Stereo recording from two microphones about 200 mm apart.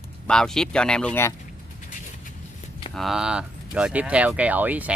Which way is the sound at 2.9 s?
Centre (ahead or behind).